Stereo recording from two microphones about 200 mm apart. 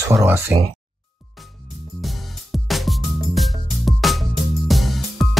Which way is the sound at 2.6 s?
Centre (ahead or behind).